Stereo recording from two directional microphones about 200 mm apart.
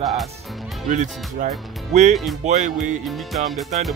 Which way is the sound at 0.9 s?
40° right (ahead or behind).